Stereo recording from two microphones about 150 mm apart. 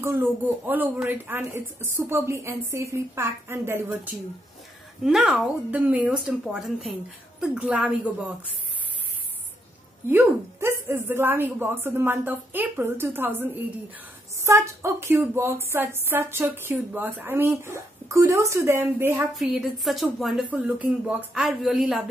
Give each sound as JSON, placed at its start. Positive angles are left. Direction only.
{"t": 0.0, "sound": "speech", "side_deg": -15}
{"t": 5.0, "sound": "speech", "side_deg": -5}
{"t": 10.0, "sound": "speech", "side_deg": -15}
{"t": 19.3, "sound": "speech", "side_deg": 0}